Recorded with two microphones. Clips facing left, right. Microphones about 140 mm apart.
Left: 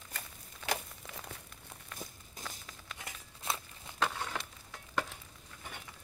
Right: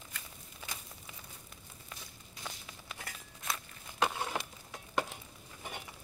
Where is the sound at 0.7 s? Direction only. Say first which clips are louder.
Left 12 dB; 80° left.